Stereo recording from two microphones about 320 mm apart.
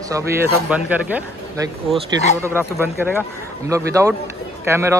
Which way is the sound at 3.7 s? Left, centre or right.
Centre.